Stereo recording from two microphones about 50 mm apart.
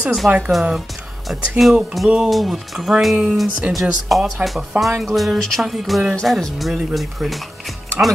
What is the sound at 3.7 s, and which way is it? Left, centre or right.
Speech, right.